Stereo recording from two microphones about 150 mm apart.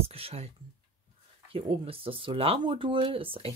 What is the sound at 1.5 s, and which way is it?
Speech, 35° right (ahead or behind).